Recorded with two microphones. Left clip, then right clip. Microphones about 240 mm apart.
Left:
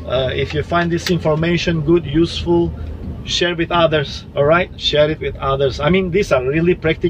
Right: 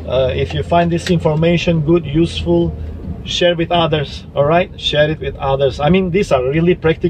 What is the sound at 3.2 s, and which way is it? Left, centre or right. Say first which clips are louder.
Speech: right 4 dB; centre.